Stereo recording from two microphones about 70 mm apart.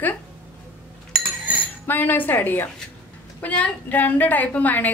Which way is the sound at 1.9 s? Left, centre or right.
Left.